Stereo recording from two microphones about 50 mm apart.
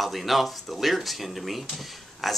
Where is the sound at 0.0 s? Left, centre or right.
Centre.